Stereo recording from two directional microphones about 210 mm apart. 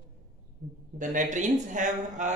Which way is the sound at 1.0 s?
35° right (ahead or behind).